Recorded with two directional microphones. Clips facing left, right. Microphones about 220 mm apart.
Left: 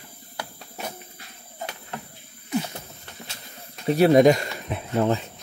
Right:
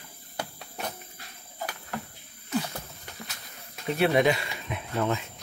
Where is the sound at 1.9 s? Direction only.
20° left (ahead or behind).